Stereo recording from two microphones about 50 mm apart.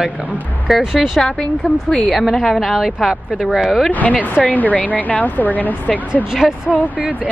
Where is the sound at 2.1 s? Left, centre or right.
Centre.